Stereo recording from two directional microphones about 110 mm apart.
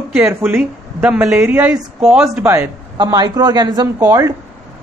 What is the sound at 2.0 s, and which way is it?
Speech, 5° right (ahead or behind).